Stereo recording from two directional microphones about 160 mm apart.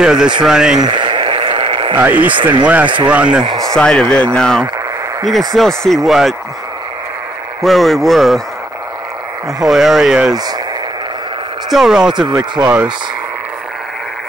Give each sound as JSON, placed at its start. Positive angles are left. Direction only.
{"t": 0.0, "sound": "speech", "side_deg": -5}
{"t": 0.7, "sound": "a sound", "side_deg": -30}
{"t": 2.0, "sound": "speech", "side_deg": -10}
{"t": 2.3, "sound": "speech", "side_deg": -30}
{"t": 2.6, "sound": "speech", "side_deg": -10}
{"t": 3.4, "sound": "speech", "side_deg": -20}
{"t": 3.7, "sound": "speech", "side_deg": 5}
{"t": 7.6, "sound": "speech", "side_deg": 0}
{"t": 9.6, "sound": "speech", "side_deg": 0}
{"t": 11.7, "sound": "speech", "side_deg": -5}
{"t": 12.3, "sound": "speech", "side_deg": -25}